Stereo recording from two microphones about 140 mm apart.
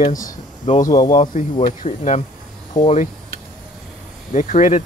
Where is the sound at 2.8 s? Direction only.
55° left (ahead or behind).